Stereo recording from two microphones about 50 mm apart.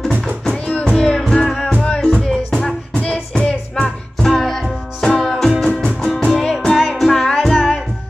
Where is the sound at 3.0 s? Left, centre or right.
Left.